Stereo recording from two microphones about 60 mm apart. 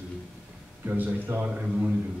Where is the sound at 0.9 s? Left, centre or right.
Right.